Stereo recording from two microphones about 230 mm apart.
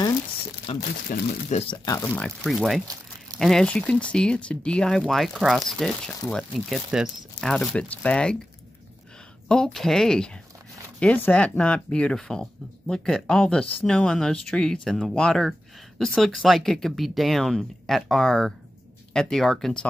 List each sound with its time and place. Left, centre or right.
0.7 s speech: left
1.9 s speech: centre
9.5 s speech: centre